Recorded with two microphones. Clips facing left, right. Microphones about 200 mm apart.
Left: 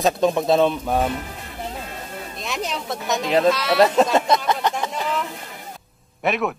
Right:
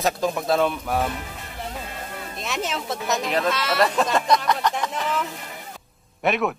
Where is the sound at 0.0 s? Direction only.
20° left (ahead or behind).